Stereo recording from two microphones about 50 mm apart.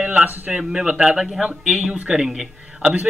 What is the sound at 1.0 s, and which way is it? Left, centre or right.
A man's voice, centre.